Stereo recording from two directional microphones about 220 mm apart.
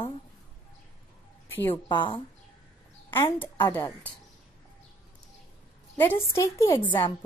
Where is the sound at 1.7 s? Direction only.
20° left (ahead or behind).